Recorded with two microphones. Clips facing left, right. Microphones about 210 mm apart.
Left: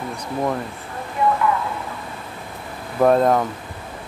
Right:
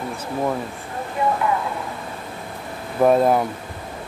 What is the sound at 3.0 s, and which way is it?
Speech, 5° right (ahead or behind).